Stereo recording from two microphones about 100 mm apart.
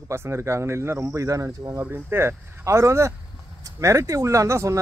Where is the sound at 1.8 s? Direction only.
20° right (ahead or behind).